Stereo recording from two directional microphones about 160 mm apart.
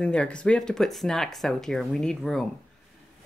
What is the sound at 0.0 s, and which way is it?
Speech, 5° left (ahead or behind).